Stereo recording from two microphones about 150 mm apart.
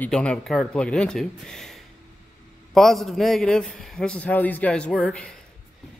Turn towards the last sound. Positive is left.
turn(degrees=5)  # may be behind; listen again after turning